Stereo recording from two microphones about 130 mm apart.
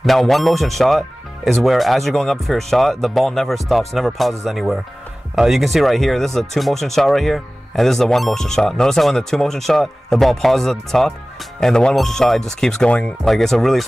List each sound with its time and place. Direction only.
0.0 s speech: centre (ahead or behind)